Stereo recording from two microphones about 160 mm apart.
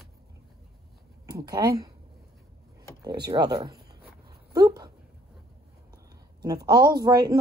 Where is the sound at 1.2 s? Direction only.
25° right (ahead or behind).